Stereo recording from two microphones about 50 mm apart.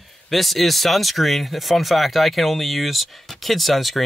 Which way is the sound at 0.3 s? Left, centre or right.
Centre.